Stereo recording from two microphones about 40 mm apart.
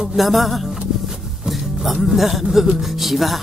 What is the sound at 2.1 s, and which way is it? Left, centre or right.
Music, centre.